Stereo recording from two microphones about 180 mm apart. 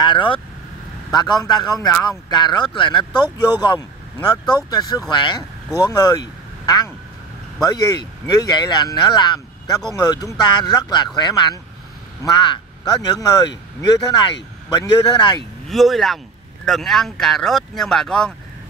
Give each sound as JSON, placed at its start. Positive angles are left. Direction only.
{"t": 0.0, "sound": "speech", "side_deg": 25}
{"t": 15.7, "sound": "speech", "side_deg": 0}